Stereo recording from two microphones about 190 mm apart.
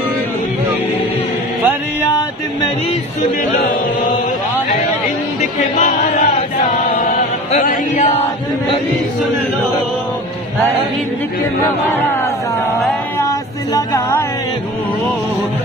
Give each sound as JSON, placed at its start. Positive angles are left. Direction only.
{"t": 5.4, "sound": "speech", "side_deg": 35}
{"t": 7.0, "sound": "music", "side_deg": 45}
{"t": 11.9, "sound": "speech", "side_deg": 10}
{"t": 13.7, "sound": "a sound", "side_deg": 15}